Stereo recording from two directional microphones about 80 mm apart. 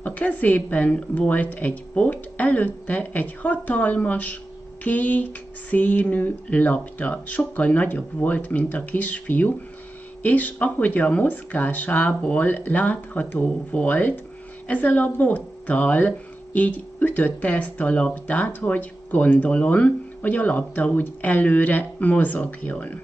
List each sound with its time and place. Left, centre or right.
0.0 s speech: centre